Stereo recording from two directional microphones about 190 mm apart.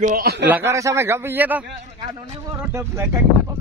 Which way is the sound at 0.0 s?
45° right (ahead or behind).